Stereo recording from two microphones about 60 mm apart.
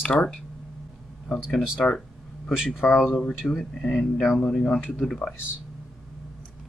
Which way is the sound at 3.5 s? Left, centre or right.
Centre.